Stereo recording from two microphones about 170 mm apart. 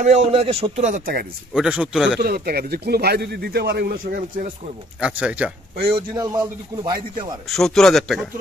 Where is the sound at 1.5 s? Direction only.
5° right (ahead or behind).